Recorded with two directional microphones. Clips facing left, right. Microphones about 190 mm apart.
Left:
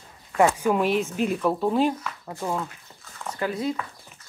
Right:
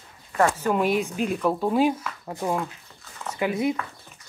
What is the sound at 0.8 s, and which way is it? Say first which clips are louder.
Speech: even; centre (ahead or behind).